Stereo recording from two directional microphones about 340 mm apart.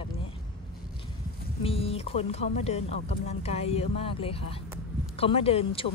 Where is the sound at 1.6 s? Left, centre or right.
Centre.